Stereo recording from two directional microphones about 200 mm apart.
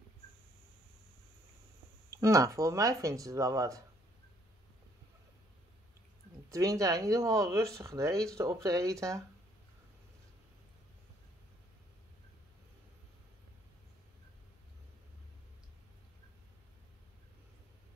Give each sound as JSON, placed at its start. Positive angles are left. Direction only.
{"t": 2.1, "sound": "speech", "side_deg": -15}
{"t": 6.5, "sound": "speech", "side_deg": -15}